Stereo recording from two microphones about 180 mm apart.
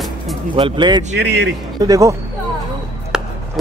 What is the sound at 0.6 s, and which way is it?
Speech, 25° right (ahead or behind).